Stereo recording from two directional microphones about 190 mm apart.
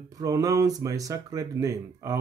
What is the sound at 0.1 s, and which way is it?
Speech, 15° right (ahead or behind).